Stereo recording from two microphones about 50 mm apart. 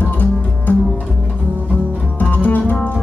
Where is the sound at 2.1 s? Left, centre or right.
Left.